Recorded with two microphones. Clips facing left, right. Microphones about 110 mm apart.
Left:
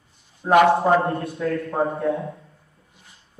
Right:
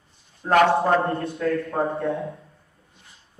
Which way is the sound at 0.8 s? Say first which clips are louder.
Left 2 dB; 5° left (ahead or behind).